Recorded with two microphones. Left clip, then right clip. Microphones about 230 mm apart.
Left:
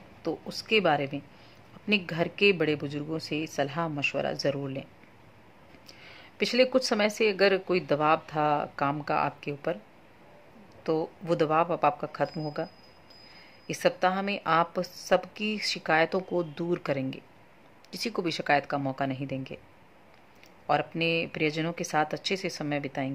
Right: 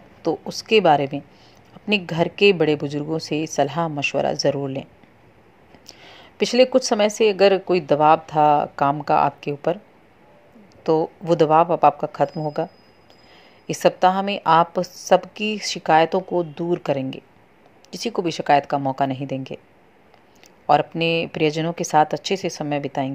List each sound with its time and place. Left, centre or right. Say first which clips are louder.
0.2 s a woman's voice: right 9 dB; centre
5.9 s a woman's voice: right 6 dB; centre
10.8 s a woman's voice: right 10 dB; centre
13.7 s a woman's voice: right 9 dB; centre
20.6 s a woman's voice: right 9 dB; centre